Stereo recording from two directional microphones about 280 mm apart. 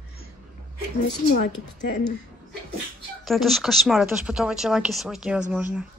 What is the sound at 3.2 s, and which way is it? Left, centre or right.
A woman's voice, centre.